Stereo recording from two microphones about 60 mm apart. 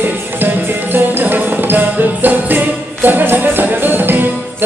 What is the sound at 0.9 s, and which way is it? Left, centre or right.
Music, right.